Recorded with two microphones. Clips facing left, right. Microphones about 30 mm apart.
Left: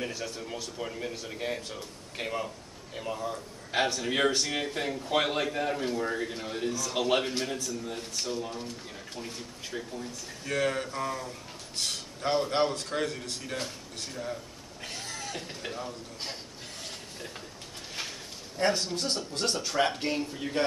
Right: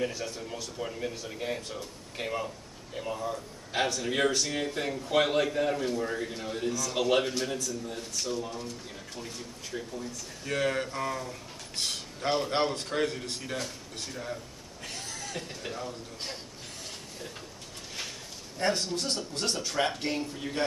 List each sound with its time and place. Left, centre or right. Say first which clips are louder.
0.0 s speech: right 2 dB; centre
4.3 s speech: left 1 dB; left
5.0 s speech: right 3 dB; centre
6.7 s a man's voice: right 1 dB; left
7.5 s a man's voice: even; left
8.3 s speech: right 1 dB; centre
10.5 s speech: even; centre
11.8 s a sound: even; centre
12.4 s a man's voice: left 1 dB; centre
14.8 s a sound: left 1 dB; left
15.3 s speech: even; centre
18.6 s speech: left 1 dB; centre